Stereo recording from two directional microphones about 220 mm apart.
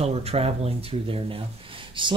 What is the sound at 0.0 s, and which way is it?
Speech, 30° right (ahead or behind).